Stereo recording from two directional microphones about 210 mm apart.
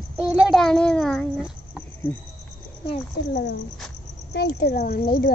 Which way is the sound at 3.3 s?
55° left (ahead or behind).